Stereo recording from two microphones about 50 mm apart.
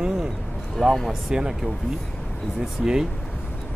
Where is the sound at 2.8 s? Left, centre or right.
Centre.